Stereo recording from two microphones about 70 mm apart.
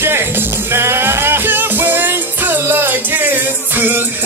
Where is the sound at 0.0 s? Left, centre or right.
Right.